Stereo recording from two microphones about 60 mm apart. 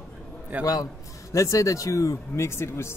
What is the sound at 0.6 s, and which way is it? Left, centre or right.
A man's voice, left.